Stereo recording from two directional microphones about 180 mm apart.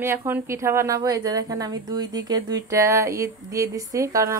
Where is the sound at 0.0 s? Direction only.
15° right (ahead or behind).